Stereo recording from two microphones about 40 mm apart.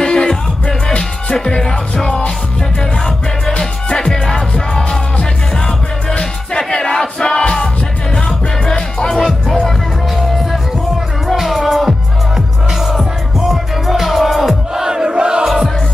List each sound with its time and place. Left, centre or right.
0.0 s music: centre
4.0 s music: centre
6.1 s music: centre
9.2 s music: centre
11.3 s music: centre
12.9 s music: centre
14.8 s crowd: centre